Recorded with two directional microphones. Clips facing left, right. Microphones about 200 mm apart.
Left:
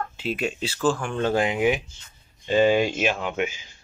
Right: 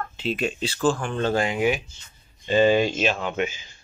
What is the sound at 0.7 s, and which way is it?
Speech, 10° right (ahead or behind).